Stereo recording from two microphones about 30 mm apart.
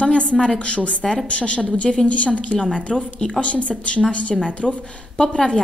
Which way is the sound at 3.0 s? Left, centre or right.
Left.